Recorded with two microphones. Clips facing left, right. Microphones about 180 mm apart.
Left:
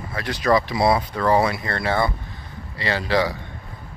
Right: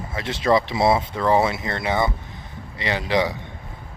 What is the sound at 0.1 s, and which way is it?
Speech, 25° right (ahead or behind).